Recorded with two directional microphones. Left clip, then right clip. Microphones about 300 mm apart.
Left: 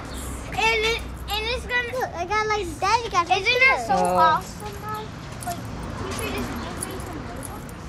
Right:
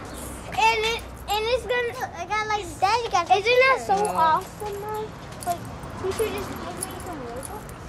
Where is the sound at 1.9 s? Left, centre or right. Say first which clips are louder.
Left 3 dB; centre.